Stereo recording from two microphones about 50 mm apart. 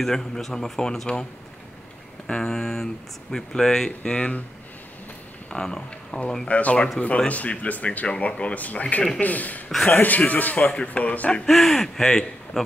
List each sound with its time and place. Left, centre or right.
0.0 s speech: centre
2.2 s speech: centre
4.0 s speech: left
5.5 s a man's voice: centre
11.4 s speech: centre